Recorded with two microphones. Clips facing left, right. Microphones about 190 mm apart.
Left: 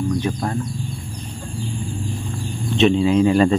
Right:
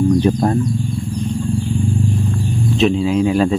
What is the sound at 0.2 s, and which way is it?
Speech, 35° right (ahead or behind).